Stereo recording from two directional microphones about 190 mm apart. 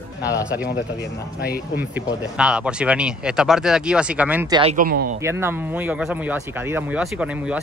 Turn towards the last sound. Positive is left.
turn(degrees=-5)  # may be behind; listen again after turning